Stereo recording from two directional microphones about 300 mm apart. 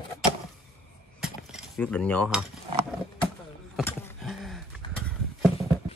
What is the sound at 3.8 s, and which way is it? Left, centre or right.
Horse, centre.